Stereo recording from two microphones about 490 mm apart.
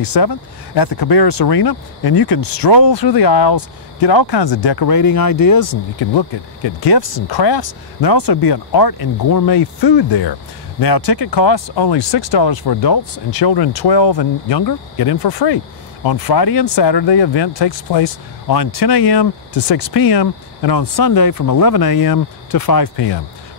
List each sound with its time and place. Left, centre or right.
0.0 s speech: left